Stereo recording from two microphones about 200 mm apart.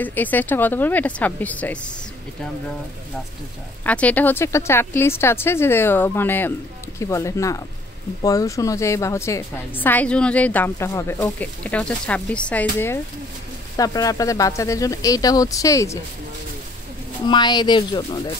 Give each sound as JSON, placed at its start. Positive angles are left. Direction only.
{"t": 0.0, "sound": "a woman's voice", "side_deg": 10}
{"t": 3.8, "sound": "a woman's voice", "side_deg": 5}
{"t": 17.3, "sound": "speech", "side_deg": 20}